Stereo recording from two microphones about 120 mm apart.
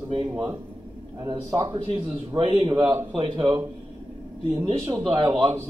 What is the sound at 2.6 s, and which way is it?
Speech, 35° right (ahead or behind).